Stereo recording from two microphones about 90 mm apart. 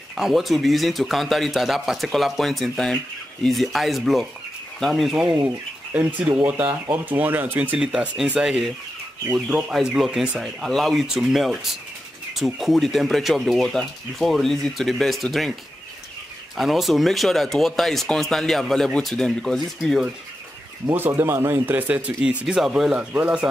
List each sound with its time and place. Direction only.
0.1 s speech: 5° right (ahead or behind)
5.2 s speech: 15° right (ahead or behind)
7.9 s speech: 5° right (ahead or behind)
16.5 s speech: centre (ahead or behind)
20.9 s speech: 25° right (ahead or behind)